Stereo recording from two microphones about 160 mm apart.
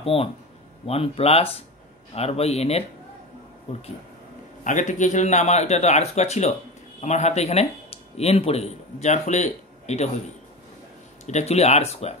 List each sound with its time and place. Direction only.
0.0 s speech: 35° left (ahead or behind)
4.6 s a man's voice: 50° left (ahead or behind)
11.2 s speech: 45° left (ahead or behind)